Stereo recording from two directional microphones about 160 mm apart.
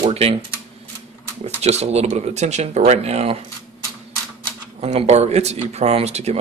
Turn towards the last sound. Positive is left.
turn(degrees=-40)  # may be behind; listen again after turning